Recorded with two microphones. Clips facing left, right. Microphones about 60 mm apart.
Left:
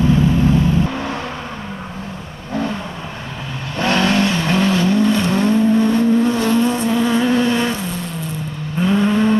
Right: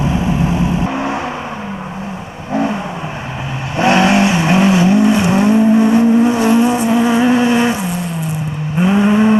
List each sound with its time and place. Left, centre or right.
0.0 s vehicle: centre
2.5 s vehicle: centre